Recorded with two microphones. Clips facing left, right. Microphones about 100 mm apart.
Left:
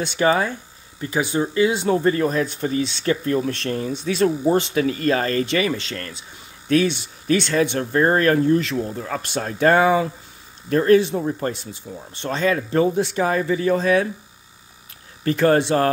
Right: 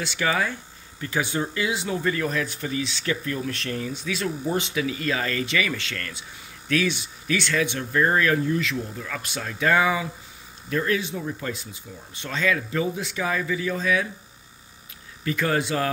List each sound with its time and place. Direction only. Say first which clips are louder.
0.2 s speech: left 6 dB; 35° left (ahead or behind)
1.0 s speech: left 4 dB; 20° left (ahead or behind)
1.6 s speech: left 11 dB; 30° left (ahead or behind)
11.9 s speech: left 8 dB; 50° left (ahead or behind)
12.2 s speech: left 4 dB; 35° left (ahead or behind)
15.3 s speech: left 8 dB; 40° left (ahead or behind)